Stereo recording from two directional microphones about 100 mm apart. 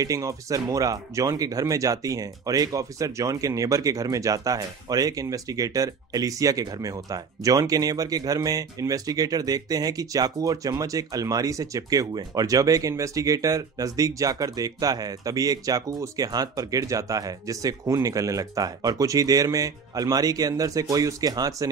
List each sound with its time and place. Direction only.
0.0 s speech: 35° right (ahead or behind)